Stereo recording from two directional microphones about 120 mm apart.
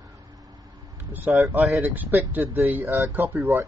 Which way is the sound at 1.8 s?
15° right (ahead or behind).